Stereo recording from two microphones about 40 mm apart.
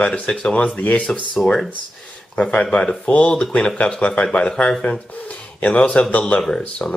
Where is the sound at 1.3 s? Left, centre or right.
Centre.